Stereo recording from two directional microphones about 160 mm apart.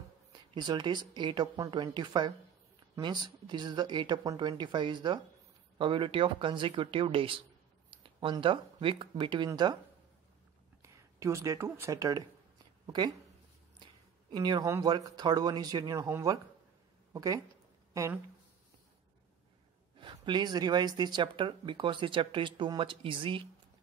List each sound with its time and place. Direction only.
0.6 s speech: 30° right (ahead or behind)
10.8 s a woman's voice: 20° right (ahead or behind)
14.3 s speech: 25° right (ahead or behind)
20.0 s speech: 30° right (ahead or behind)